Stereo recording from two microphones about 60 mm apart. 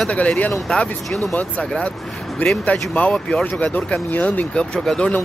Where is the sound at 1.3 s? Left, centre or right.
Left.